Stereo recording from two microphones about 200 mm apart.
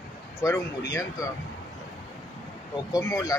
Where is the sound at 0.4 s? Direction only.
15° left (ahead or behind).